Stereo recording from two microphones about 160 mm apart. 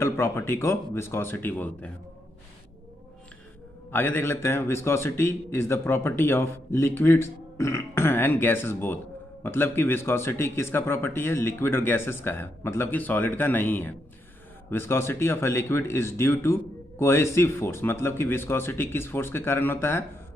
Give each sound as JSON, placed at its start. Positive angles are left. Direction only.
{"t": 0.0, "sound": "a man's voice", "side_deg": 15}
{"t": 3.9, "sound": "a man's voice", "side_deg": 15}